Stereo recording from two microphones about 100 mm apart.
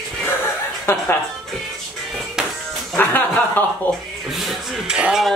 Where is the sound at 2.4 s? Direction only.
5° right (ahead or behind).